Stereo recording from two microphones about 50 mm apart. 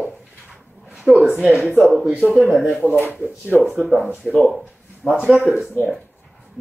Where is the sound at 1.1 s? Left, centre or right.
Centre.